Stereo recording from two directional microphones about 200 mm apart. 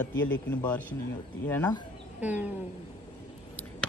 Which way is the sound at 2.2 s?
10° right (ahead or behind).